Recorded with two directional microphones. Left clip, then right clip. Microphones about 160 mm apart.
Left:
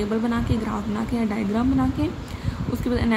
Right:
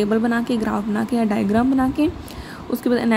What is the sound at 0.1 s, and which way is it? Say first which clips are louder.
A woman's voice: right 5 dB; 35° right (ahead or behind).